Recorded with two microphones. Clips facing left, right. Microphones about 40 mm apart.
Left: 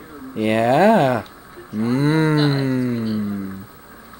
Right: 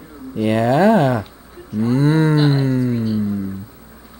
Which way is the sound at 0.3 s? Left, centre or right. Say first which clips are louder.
Even; centre.